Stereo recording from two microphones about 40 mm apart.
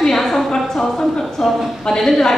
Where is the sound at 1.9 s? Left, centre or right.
Centre.